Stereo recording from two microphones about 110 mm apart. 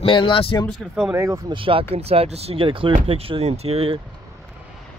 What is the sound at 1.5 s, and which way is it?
Speech, 55° right (ahead or behind).